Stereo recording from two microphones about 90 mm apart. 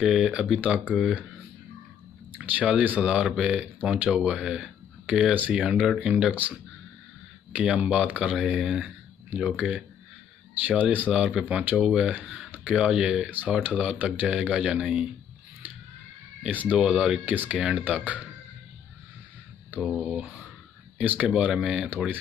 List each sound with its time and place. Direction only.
0.0 s speech: 10° right (ahead or behind)
2.3 s speech: 15° right (ahead or behind)
7.5 s speech: 10° right (ahead or behind)
16.7 s speech: 10° right (ahead or behind)
20.0 s speech: 15° right (ahead or behind)